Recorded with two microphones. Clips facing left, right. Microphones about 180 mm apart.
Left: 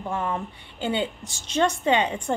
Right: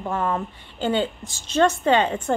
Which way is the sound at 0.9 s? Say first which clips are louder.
Right 3 dB; 15° left (ahead or behind).